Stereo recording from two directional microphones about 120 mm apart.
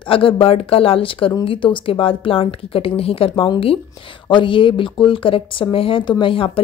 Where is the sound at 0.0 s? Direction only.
45° left (ahead or behind).